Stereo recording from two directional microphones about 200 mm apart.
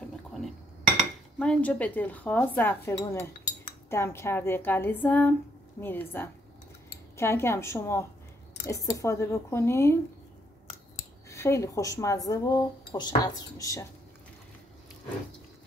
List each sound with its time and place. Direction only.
1.4 s speech: 5° left (ahead or behind)
11.2 s speech: 15° left (ahead or behind)